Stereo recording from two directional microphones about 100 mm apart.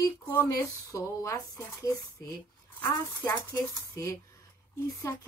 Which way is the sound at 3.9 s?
30° left (ahead or behind).